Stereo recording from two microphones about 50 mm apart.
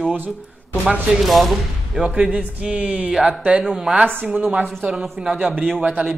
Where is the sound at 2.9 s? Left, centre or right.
Centre.